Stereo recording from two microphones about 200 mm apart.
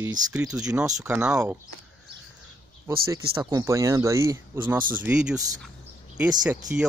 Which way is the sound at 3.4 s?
15° right (ahead or behind).